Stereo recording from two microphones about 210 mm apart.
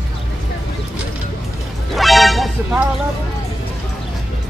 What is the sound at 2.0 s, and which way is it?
Music, centre (ahead or behind).